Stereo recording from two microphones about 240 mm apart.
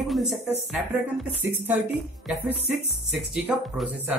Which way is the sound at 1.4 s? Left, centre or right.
Centre.